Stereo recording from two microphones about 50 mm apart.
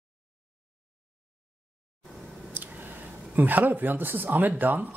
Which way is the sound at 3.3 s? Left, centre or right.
Right.